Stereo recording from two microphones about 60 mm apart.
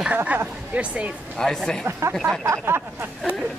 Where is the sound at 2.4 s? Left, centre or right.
Right.